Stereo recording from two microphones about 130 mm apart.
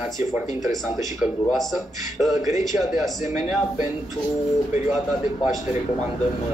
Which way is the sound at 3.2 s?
65° left (ahead or behind).